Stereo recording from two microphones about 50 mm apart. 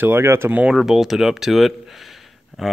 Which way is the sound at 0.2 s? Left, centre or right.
Right.